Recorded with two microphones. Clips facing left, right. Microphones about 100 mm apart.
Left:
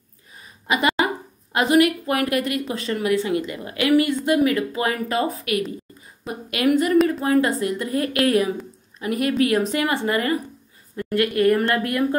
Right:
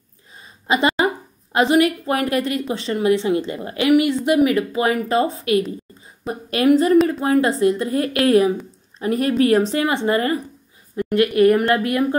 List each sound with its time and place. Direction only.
0.7 s a woman's voice: 30° right (ahead or behind)